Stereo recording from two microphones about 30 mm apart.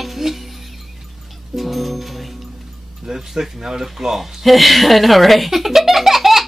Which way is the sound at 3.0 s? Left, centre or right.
Centre.